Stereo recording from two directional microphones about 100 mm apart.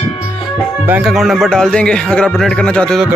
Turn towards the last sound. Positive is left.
turn(degrees=10)  # may be behind; listen again after turning